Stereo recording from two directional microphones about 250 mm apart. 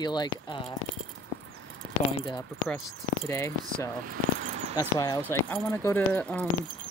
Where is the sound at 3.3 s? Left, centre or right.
Centre.